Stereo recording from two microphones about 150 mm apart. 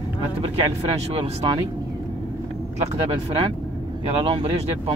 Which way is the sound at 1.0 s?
40° right (ahead or behind).